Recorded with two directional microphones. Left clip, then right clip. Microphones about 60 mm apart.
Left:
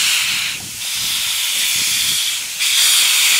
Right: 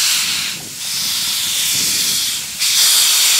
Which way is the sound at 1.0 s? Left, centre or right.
Centre.